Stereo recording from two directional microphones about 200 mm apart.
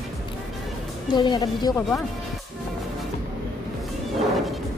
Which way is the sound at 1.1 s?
20° left (ahead or behind).